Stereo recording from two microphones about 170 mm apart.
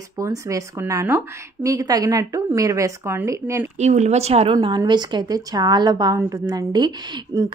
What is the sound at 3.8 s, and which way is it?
Speech, 40° right (ahead or behind).